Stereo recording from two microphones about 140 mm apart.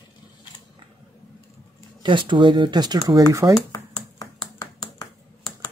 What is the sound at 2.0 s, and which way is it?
Speech, 35° right (ahead or behind).